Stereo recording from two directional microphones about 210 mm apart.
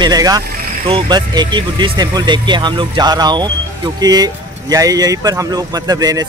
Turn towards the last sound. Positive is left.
turn(degrees=-20)  # may be behind; listen again after turning